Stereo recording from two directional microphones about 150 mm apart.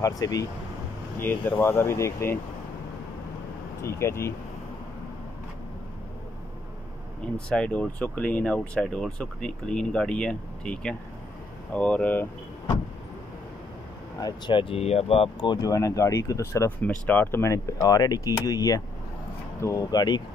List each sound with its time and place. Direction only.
0.0 s speech: 25° left (ahead or behind)
1.2 s speech: 10° left (ahead or behind)
3.8 s speech: 15° left (ahead or behind)
7.3 s speech: 5° left (ahead or behind)
14.2 s speech: 30° left (ahead or behind)
15.5 s speech: 20° left (ahead or behind)